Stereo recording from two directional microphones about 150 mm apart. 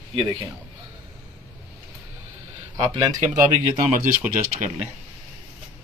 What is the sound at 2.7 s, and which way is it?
Speech, 25° right (ahead or behind).